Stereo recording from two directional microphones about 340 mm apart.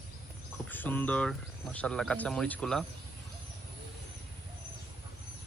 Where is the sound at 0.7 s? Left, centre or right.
Centre.